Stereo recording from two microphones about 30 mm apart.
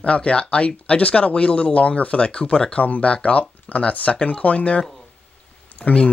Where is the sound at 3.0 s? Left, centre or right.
Left.